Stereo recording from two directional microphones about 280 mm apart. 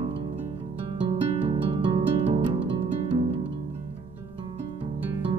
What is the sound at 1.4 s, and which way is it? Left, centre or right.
Music, centre.